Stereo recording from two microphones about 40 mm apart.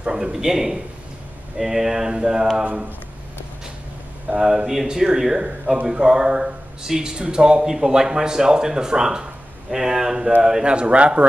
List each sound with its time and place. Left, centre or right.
0.0 s a man's voice: centre
4.4 s speech: centre
10.6 s speech: right